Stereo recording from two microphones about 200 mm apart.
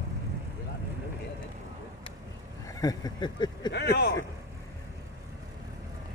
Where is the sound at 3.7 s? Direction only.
55° left (ahead or behind).